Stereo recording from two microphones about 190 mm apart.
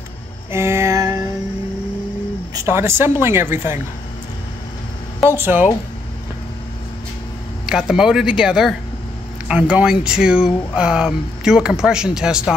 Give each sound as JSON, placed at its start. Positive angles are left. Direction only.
{"t": 0.5, "sound": "a sound", "side_deg": -15}
{"t": 2.5, "sound": "a woman's voice", "side_deg": -15}
{"t": 5.3, "sound": "a woman's voice", "side_deg": -10}
{"t": 7.6, "sound": "speech", "side_deg": 0}